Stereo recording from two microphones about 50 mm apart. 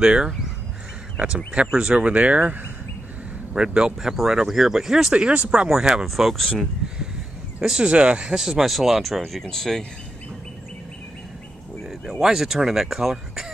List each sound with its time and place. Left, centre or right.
0.0 s speech: centre
3.5 s speech: centre
4.1 s speech: centre
5.1 s speech: right
5.7 s speech: centre
6.0 s speech: centre
7.8 s speech: right; by 9.8 s centre
12.2 s speech: centre